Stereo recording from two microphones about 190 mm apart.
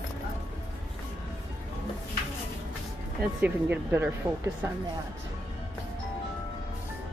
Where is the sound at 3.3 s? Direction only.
10° right (ahead or behind).